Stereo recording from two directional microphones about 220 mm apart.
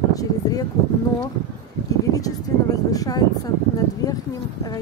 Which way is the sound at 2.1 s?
15° left (ahead or behind).